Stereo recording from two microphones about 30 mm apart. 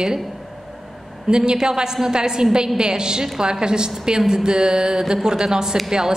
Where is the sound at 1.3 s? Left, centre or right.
Right.